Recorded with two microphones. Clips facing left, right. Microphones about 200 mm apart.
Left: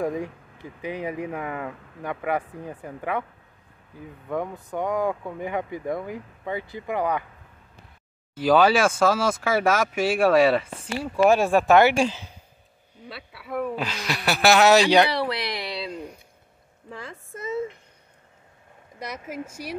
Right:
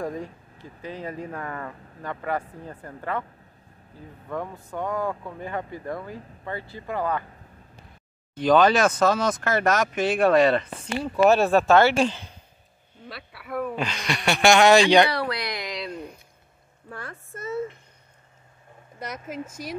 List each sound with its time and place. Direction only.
0.0 s speech: 10° left (ahead or behind)
4.3 s speech: 15° left (ahead or behind)
8.4 s a woman's voice: 5° left (ahead or behind)
15.6 s a sound: 30° left (ahead or behind)
18.9 s speech: 10° left (ahead or behind)